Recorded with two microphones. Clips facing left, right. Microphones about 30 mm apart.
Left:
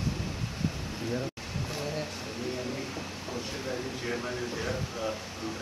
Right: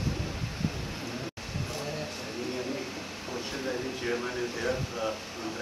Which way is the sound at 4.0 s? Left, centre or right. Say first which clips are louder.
Right 2 dB; centre.